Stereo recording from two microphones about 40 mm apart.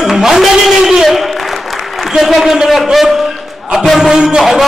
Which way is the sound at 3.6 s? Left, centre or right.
Centre.